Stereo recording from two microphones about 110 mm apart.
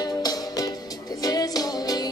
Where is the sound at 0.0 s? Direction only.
35° left (ahead or behind).